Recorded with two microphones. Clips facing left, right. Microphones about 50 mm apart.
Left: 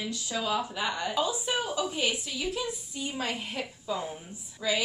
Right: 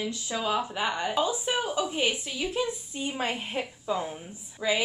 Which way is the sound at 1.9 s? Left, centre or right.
Right.